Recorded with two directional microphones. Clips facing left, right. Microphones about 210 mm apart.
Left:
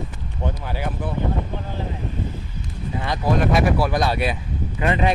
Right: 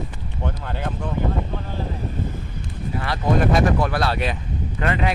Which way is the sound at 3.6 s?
15° left (ahead or behind).